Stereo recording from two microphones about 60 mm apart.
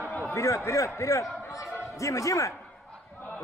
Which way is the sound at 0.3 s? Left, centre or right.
Left.